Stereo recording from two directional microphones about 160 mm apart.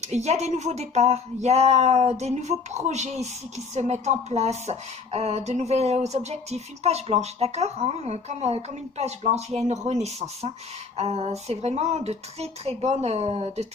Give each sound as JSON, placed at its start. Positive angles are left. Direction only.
{"t": 0.0, "sound": "speech", "side_deg": -45}